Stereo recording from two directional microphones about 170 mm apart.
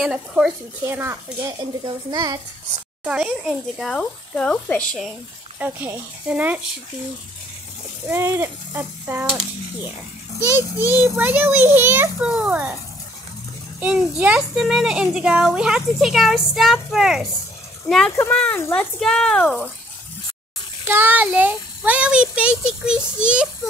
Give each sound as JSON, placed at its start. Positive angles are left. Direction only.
{"t": 0.0, "sound": "a child's voice", "side_deg": -5}
{"t": 3.0, "sound": "a child's voice", "side_deg": -5}
{"t": 5.6, "sound": "a child's voice", "side_deg": -10}
{"t": 8.1, "sound": "a child's voice", "side_deg": -15}
{"t": 10.4, "sound": "a child's voice", "side_deg": -15}
{"t": 13.7, "sound": "a child's voice", "side_deg": -10}
{"t": 20.9, "sound": "a child's voice", "side_deg": -10}